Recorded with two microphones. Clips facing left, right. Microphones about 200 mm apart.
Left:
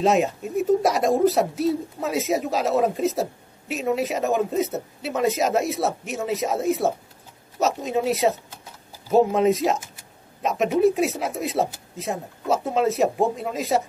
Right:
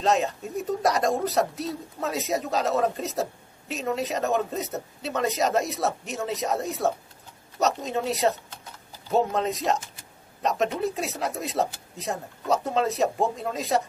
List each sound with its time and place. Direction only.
0.0 s speech: centre (ahead or behind)